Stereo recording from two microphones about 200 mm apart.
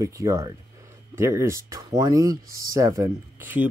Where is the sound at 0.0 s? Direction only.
15° right (ahead or behind).